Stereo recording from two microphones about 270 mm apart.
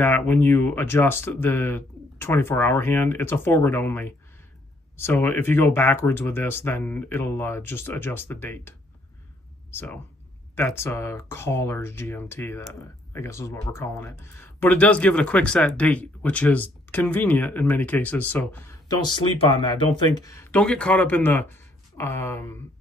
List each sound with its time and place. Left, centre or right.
0.0 s speech: centre